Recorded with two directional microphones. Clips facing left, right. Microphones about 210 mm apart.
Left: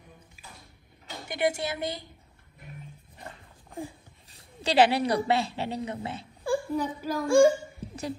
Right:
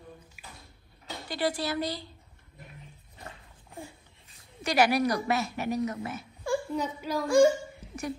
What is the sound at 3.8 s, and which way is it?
A woman's voice, 30° left (ahead or behind).